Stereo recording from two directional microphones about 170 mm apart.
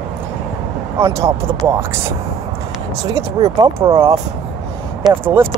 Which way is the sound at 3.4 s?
35° right (ahead or behind).